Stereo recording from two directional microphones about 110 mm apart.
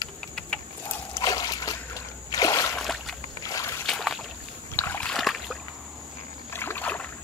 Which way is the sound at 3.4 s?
30° left (ahead or behind).